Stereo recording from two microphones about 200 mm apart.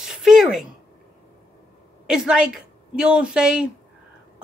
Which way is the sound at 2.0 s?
5° right (ahead or behind).